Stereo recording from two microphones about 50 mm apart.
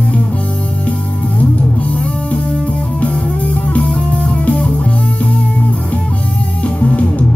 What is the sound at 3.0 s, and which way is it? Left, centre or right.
Music, left.